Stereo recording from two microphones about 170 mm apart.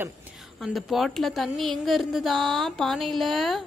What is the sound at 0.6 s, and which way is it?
A woman's voice, centre (ahead or behind).